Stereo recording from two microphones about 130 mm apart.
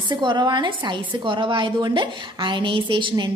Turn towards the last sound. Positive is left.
turn(degrees=-40)  # may be behind; listen again after turning